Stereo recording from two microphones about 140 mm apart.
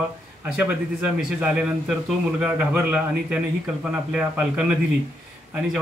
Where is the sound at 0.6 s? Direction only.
10° right (ahead or behind).